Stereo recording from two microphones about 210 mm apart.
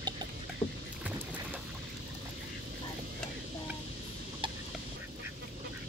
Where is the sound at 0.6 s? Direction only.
25° left (ahead or behind).